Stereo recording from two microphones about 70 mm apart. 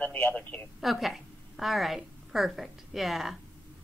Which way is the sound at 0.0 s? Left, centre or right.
Left.